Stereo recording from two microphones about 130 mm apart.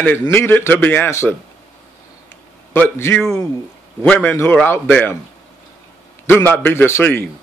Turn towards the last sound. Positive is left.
turn(degrees=15)  # may be behind; listen again after turning